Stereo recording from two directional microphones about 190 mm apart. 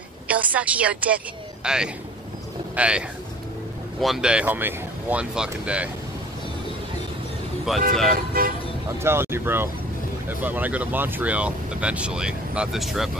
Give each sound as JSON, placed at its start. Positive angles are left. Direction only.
{"t": 0.3, "sound": "speech", "side_deg": -5}
{"t": 7.7, "sound": "speech", "side_deg": 0}
{"t": 8.3, "sound": "toot", "side_deg": -50}
{"t": 9.0, "sound": "speech", "side_deg": -10}